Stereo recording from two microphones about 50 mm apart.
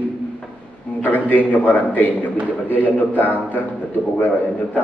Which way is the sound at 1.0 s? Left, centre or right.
Left.